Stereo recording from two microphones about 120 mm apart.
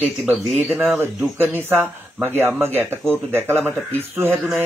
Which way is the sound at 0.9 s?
20° right (ahead or behind).